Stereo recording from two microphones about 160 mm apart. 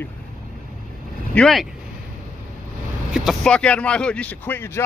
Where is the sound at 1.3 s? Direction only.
Centre (ahead or behind).